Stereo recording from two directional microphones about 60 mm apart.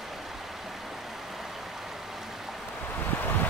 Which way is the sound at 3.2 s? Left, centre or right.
Left.